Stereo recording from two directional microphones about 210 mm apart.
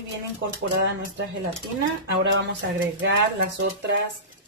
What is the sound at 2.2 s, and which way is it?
Speech, 55° right (ahead or behind).